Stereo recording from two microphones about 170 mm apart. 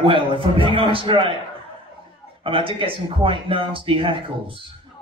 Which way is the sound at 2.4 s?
30° right (ahead or behind).